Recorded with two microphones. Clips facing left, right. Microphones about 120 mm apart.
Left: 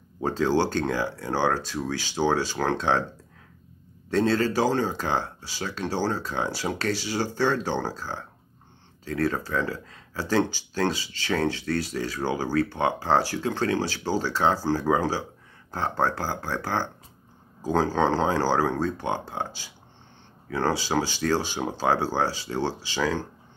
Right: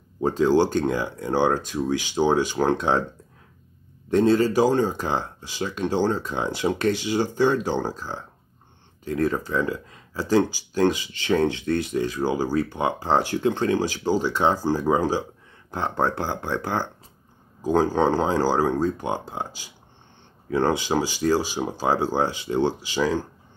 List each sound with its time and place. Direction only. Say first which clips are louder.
0.2 s speech: right 4 dB; 15° right (ahead or behind)
4.1 s speech: right 4 dB; 15° right (ahead or behind)
9.3 s speech: right 3 dB; 15° right (ahead or behind)